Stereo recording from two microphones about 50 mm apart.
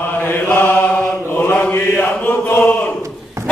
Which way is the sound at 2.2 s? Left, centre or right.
Left.